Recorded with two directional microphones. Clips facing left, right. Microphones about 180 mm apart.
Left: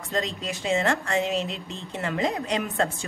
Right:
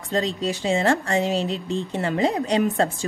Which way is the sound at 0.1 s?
35° right (ahead or behind).